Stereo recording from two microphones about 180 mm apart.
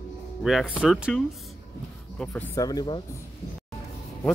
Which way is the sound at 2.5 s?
20° left (ahead or behind).